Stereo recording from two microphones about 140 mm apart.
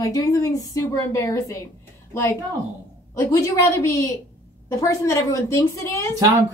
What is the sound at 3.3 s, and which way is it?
A woman's voice, 25° left (ahead or behind).